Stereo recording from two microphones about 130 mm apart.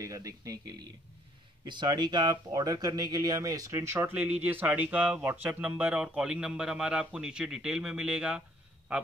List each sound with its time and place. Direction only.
0.0 s speech: 25° right (ahead or behind); by 9.0 s 10° right (ahead or behind)